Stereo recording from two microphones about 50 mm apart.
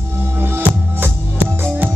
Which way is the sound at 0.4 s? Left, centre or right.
Right.